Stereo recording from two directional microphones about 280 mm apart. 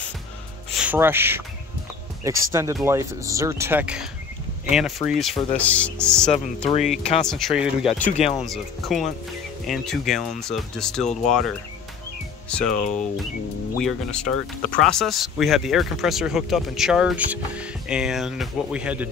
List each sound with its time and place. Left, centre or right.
0.7 s speech: centre
6.3 s speech: left
6.9 s speech: centre
8.2 s speech: left
8.5 s speech: centre
12.4 s speech: centre